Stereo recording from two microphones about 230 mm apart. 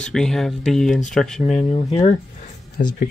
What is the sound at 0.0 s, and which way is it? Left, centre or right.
Speech, centre.